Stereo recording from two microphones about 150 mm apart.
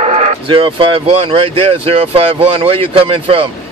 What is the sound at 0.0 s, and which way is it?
Speech, 40° right (ahead or behind).